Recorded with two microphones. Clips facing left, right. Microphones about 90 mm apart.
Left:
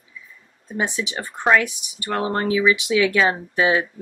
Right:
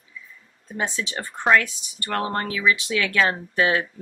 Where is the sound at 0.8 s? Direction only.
15° left (ahead or behind).